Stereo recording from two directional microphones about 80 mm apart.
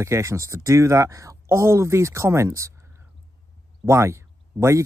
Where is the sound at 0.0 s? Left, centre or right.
Right.